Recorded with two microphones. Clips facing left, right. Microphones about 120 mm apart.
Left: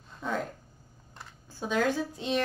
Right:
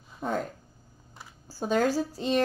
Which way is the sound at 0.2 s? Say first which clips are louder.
Right 2 dB; 45° right (ahead or behind).